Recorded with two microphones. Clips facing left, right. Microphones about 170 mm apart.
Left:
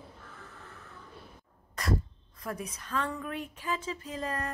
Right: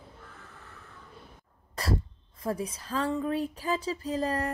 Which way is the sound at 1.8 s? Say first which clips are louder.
Right 1 dB; 30° right (ahead or behind).